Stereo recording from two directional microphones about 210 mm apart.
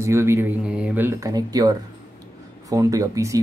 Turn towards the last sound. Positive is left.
turn(degrees=-15)  # may be behind; listen again after turning